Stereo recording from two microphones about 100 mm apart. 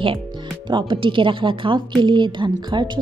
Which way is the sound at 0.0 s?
55° right (ahead or behind).